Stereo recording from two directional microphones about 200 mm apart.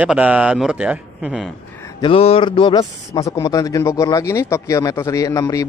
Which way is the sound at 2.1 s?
30° left (ahead or behind).